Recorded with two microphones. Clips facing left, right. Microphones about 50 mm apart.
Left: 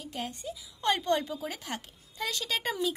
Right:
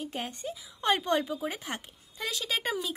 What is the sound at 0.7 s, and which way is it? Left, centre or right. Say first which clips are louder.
A woman's voice: right 1 dB; centre.